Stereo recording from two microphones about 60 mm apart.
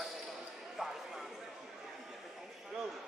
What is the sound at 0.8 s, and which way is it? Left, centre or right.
Speech, centre.